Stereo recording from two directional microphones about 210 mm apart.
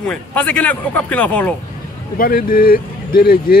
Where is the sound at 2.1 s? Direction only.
45° left (ahead or behind).